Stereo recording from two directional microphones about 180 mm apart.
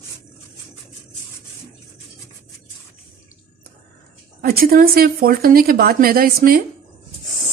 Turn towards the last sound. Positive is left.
turn(degrees=-55)  # may be behind; listen again after turning